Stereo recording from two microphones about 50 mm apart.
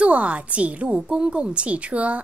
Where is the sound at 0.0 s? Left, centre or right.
Right.